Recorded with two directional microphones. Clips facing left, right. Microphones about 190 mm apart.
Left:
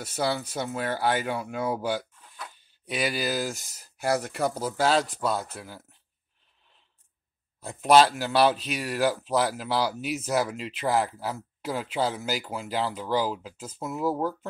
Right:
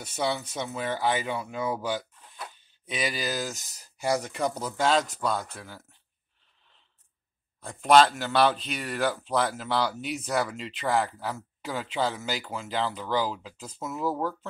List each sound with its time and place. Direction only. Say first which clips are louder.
0.1 s speech: left 1 dB; 5° left (ahead or behind)
7.6 s speech: left 1 dB; 5° left (ahead or behind)